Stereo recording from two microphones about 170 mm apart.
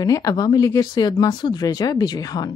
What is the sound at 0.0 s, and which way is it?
A woman's voice, 20° left (ahead or behind).